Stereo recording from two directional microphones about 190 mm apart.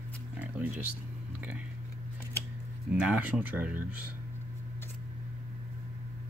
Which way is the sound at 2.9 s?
10° right (ahead or behind).